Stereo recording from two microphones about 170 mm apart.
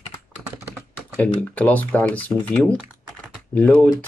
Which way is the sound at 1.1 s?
5° left (ahead or behind).